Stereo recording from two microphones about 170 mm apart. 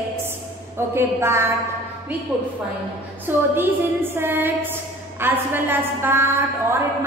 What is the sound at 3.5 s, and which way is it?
A woman's voice, 10° right (ahead or behind).